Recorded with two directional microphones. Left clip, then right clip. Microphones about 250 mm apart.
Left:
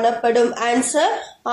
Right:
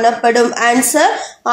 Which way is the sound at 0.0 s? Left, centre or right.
Right.